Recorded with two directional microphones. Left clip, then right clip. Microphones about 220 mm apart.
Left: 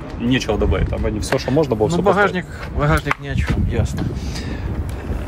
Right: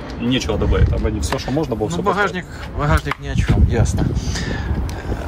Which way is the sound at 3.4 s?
25° right (ahead or behind).